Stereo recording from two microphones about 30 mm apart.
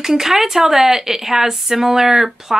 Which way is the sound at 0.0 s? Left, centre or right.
Centre.